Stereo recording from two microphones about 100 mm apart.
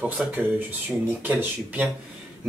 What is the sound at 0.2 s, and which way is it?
Speech, 5° right (ahead or behind).